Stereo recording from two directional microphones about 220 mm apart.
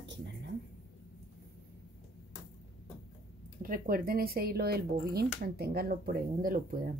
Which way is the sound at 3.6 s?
40° right (ahead or behind).